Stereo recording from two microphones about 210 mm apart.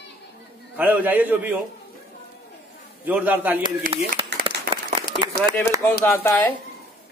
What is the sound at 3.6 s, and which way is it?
Speech, 25° right (ahead or behind).